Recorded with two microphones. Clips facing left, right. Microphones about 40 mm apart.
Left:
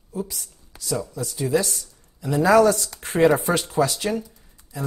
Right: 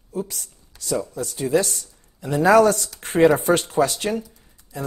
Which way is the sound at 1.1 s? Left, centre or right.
Right.